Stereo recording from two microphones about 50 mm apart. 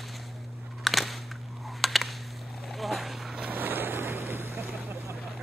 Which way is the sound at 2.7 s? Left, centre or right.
Centre.